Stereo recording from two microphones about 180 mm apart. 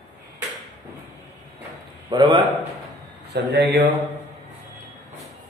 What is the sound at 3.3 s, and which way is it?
Speech, 65° right (ahead or behind).